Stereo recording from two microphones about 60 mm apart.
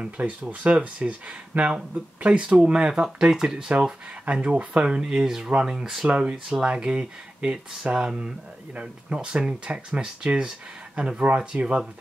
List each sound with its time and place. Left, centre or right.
0.0 s speech: right
2.2 s speech: centre